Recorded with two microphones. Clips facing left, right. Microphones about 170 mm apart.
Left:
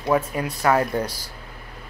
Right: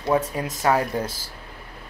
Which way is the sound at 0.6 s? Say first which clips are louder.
Left 1 dB; 20° right (ahead or behind).